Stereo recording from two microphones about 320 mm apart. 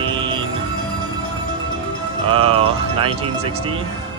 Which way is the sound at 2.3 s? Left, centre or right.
Centre.